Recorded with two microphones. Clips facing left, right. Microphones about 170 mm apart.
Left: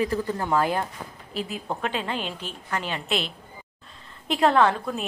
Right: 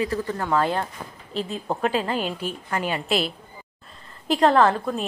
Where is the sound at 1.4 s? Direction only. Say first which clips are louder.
Right 3 dB; 30° right (ahead or behind).